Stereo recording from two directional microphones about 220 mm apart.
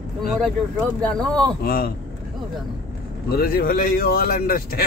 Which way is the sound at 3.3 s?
45° left (ahead or behind).